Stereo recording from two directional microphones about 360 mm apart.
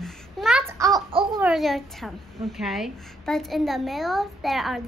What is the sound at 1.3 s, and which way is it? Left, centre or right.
A woman's voice, centre.